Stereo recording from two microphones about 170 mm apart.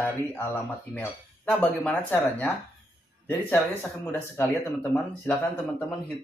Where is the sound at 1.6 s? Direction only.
10° left (ahead or behind).